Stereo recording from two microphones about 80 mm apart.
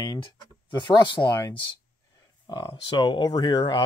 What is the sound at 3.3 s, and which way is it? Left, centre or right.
Speech, left.